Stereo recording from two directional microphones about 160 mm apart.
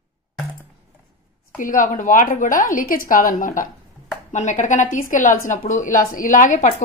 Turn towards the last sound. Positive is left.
turn(degrees=50)  # may be behind; listen again after turning